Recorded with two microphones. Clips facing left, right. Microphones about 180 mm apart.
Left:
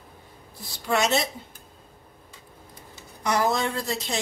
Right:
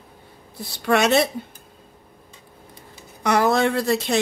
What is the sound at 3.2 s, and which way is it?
Speech, 65° right (ahead or behind).